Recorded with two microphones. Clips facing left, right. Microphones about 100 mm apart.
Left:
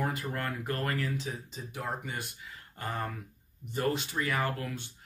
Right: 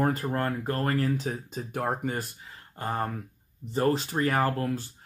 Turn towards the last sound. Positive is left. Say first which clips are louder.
# right 6 dB
turn(degrees=-35)  # may be behind; listen again after turning